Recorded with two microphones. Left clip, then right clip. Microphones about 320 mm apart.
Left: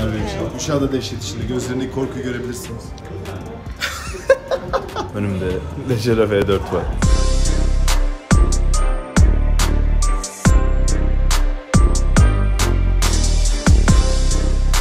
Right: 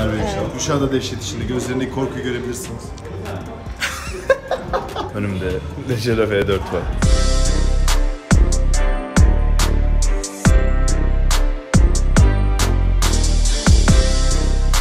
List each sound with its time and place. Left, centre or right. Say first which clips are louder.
0.0 s a man's voice: right 2 dB; centre
4.3 s chuckle: left 2 dB; centre
6.0 s speech: left 1 dB; centre
7.0 s music: right 1 dB; centre